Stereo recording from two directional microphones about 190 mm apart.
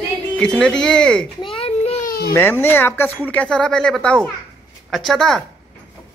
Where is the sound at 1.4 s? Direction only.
30° left (ahead or behind).